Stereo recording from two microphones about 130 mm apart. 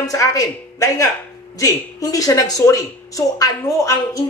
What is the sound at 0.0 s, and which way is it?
A man's voice, 25° left (ahead or behind).